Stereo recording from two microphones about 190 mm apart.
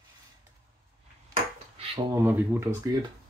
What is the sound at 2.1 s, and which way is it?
Speech, 10° right (ahead or behind).